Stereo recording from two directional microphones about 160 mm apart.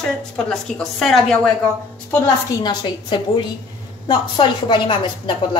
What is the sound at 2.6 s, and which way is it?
A woman's voice, 30° left (ahead or behind).